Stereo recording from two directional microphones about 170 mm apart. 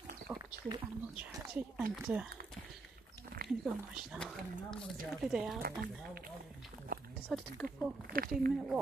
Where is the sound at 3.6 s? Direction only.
Centre (ahead or behind).